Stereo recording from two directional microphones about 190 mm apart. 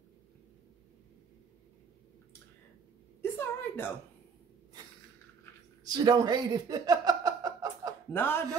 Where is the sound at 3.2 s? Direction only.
10° left (ahead or behind).